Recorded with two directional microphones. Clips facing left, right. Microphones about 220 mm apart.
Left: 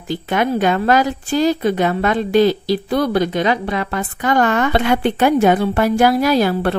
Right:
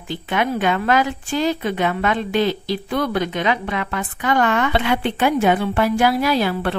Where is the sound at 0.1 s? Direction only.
40° left (ahead or behind).